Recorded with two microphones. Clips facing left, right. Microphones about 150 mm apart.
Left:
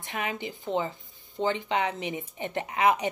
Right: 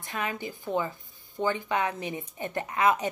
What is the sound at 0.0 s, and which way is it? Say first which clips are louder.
Speech: even; 20° left (ahead or behind).